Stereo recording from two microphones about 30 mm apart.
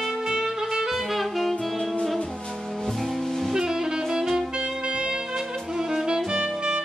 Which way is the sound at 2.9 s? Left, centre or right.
Centre.